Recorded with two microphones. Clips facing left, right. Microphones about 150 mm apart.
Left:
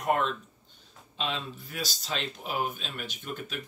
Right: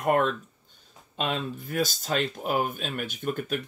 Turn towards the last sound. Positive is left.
turn(degrees=-50)  # may be behind; listen again after turning